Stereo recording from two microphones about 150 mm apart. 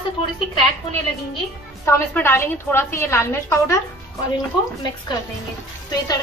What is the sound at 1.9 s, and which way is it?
A woman's voice, 15° left (ahead or behind).